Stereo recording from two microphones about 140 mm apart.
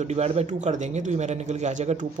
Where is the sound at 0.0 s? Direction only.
50° right (ahead or behind).